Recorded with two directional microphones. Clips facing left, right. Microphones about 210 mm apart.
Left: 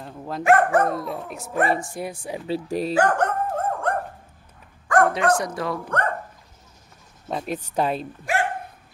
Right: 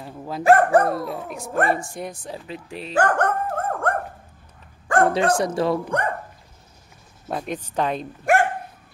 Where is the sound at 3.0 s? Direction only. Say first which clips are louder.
Right 3 dB; 55° right (ahead or behind).